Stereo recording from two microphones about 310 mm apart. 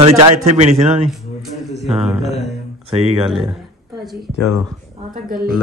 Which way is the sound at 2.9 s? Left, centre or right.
Centre.